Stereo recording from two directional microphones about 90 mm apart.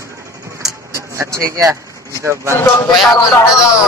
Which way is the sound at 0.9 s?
30° right (ahead or behind).